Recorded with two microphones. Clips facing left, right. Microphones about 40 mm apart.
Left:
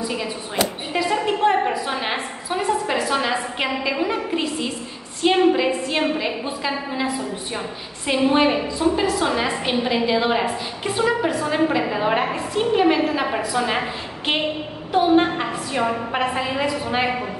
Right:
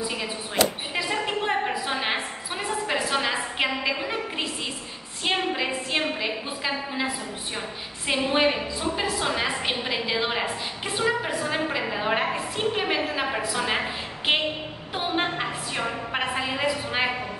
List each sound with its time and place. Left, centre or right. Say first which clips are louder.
0.1 s a sound: left 4 dB; centre
5.2 s a woman's voice: left 9 dB; centre
8.1 s a woman's voice: left 5 dB; centre